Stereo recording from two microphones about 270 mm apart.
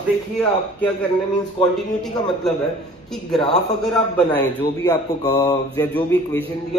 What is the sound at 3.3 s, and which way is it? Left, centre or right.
A man's voice, centre.